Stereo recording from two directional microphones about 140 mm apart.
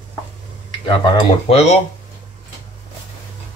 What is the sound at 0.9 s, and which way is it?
Cutlery, 35° left (ahead or behind).